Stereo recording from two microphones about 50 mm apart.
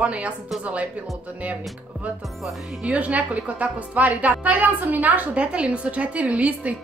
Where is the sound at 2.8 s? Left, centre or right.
Right.